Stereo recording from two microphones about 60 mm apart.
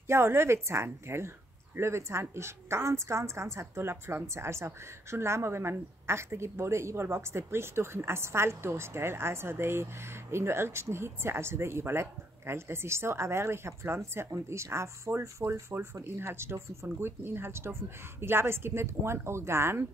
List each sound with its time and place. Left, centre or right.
0.0 s a woman's voice: right